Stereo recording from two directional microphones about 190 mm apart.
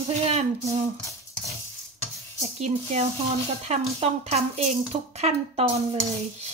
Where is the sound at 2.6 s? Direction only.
35° right (ahead or behind).